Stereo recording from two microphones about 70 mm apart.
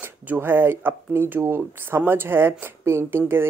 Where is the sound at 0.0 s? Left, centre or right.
Right.